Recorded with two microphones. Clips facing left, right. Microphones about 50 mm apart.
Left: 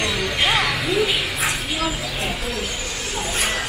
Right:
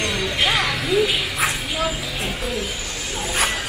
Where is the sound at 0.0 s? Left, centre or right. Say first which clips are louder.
Even; centre.